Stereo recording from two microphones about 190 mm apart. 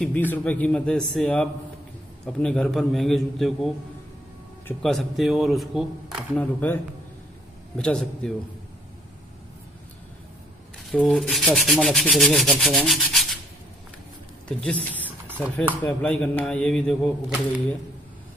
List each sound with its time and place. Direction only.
0.0 s rub: 10° left (ahead or behind)
6.3 s speech: 10° left (ahead or behind)
7.7 s rub: 5° left (ahead or behind)
10.9 s rub: centre (ahead or behind)
14.6 s a woman's voice: 10° left (ahead or behind)
15.7 s rub: 10° left (ahead or behind)